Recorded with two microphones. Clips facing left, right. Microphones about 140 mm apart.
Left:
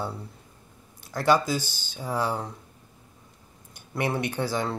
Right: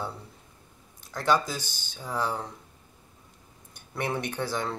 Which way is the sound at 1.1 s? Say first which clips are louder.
Left 3 dB; 10° left (ahead or behind).